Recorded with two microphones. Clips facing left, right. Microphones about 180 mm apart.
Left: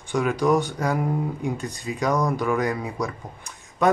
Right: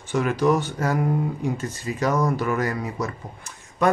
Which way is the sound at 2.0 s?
5° right (ahead or behind).